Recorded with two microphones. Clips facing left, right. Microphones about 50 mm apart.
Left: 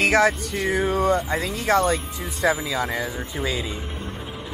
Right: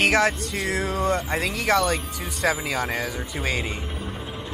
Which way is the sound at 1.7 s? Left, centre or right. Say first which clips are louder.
Left 2 dB; right.